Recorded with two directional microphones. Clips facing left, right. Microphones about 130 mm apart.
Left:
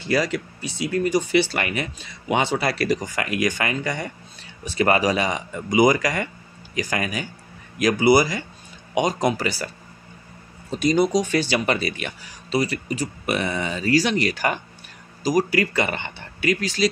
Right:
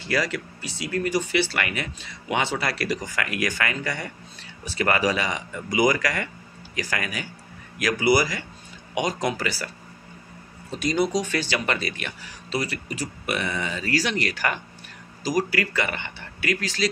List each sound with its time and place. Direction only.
0.0 s speech: 20° left (ahead or behind)
10.8 s speech: 20° left (ahead or behind)